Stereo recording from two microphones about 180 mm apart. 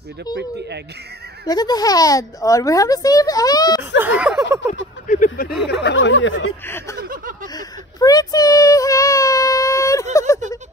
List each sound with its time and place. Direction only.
0.4 s speech: 70° right (ahead or behind)
1.4 s speech: 20° left (ahead or behind)
4.0 s speech: 5° right (ahead or behind)
5.0 s speech: 50° left (ahead or behind)
5.7 s speech: 75° left (ahead or behind); by 6.4 s 90° left
6.6 s speech: 10° left (ahead or behind)
7.0 s a sound: 50° right (ahead or behind)
7.5 s a sound: 20° left (ahead or behind)